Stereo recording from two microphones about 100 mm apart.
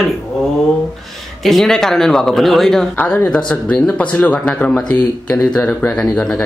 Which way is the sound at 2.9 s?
15° left (ahead or behind).